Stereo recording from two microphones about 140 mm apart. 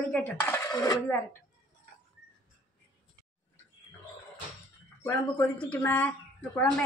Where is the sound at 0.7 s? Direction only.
25° left (ahead or behind).